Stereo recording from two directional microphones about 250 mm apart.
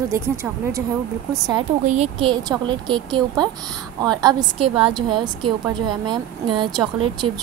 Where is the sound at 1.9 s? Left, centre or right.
Right.